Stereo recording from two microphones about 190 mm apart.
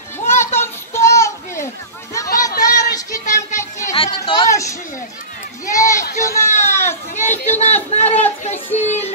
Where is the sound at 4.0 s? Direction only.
25° left (ahead or behind).